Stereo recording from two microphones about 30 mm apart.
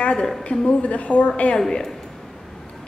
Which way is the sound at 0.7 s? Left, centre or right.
Left.